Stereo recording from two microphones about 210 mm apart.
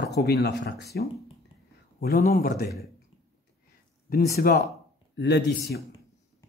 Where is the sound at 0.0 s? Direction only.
50° left (ahead or behind).